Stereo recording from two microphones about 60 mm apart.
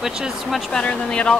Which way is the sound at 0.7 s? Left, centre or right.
Centre.